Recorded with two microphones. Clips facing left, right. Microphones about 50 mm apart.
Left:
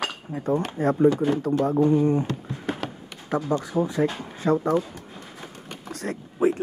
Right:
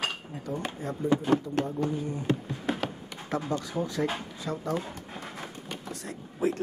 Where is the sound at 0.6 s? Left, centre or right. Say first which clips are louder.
Left 13 dB; left.